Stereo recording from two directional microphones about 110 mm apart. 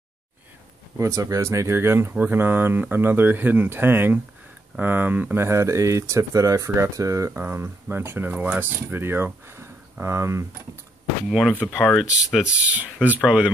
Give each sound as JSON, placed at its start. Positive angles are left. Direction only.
{"t": 0.9, "sound": "speech", "side_deg": -30}
{"t": 11.2, "sound": "speech", "side_deg": -5}